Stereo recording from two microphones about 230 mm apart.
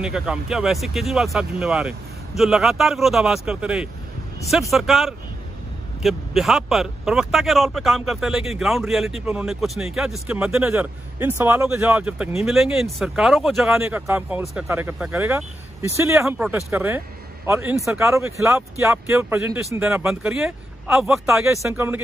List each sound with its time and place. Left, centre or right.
0.0 s speech: centre